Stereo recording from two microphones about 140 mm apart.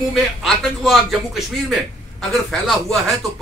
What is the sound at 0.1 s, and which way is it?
A man's voice, centre (ahead or behind).